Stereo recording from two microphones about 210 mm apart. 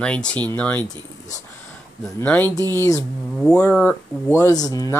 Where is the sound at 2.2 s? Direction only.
10° left (ahead or behind).